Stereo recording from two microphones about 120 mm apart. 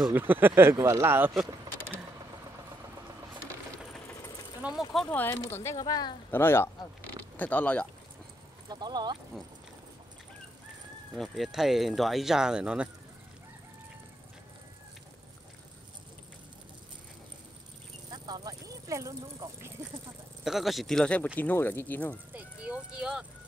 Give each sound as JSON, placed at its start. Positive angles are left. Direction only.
{"t": 0.1, "sound": "speech", "side_deg": -15}
{"t": 4.1, "sound": "vehicle", "side_deg": 25}
{"t": 4.9, "sound": "speech", "side_deg": 10}
{"t": 6.3, "sound": "speech", "side_deg": 20}
{"t": 8.6, "sound": "speech", "side_deg": -35}
{"t": 11.1, "sound": "speech", "side_deg": 0}
{"t": 18.1, "sound": "a sound", "side_deg": -35}
{"t": 20.4, "sound": "speech", "side_deg": 0}
{"t": 22.3, "sound": "speech", "side_deg": -10}